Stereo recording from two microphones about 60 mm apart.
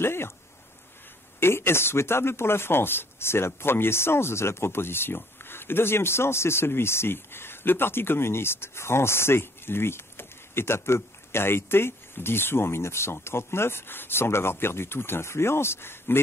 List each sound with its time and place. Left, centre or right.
0.0 s speech: left
1.4 s speech: left